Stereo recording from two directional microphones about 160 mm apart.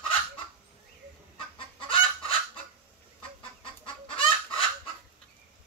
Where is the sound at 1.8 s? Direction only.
35° left (ahead or behind).